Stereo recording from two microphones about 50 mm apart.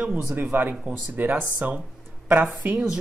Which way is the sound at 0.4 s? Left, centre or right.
Right.